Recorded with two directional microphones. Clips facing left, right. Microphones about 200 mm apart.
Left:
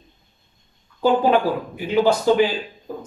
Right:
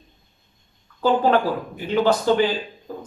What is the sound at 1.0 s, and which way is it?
Speech, 10° left (ahead or behind).